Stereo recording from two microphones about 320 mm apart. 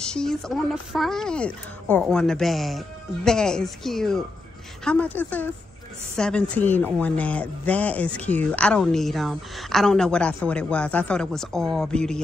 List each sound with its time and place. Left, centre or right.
0.1 s speech: centre